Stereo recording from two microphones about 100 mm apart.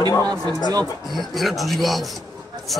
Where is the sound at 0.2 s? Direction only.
40° right (ahead or behind).